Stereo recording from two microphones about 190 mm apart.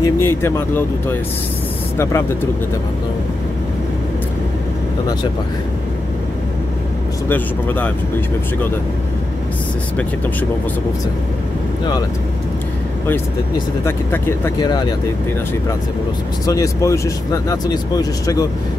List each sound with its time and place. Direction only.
0.0 s speech: 10° left (ahead or behind)
7.2 s speech: 10° left (ahead or behind)
13.8 s speech: 10° left (ahead or behind)
16.4 s speech: 15° left (ahead or behind)